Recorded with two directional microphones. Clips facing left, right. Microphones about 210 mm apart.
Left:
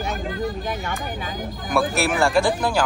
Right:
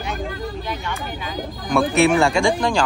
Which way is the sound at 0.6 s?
45° left (ahead or behind).